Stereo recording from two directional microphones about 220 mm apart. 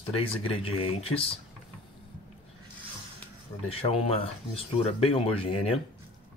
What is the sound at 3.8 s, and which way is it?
Speech, 25° left (ahead or behind).